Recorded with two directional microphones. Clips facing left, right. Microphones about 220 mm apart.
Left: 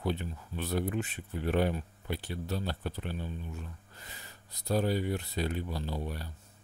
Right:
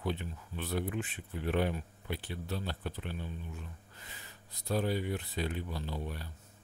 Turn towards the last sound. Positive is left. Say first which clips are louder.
# left 3 dB
turn(degrees=40)  # may be behind; listen again after turning